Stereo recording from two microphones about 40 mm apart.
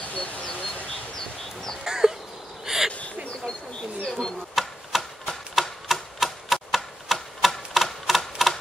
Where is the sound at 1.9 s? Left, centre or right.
Centre.